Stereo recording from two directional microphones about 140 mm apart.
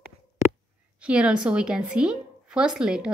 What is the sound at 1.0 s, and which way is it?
A woman's voice, 10° right (ahead or behind).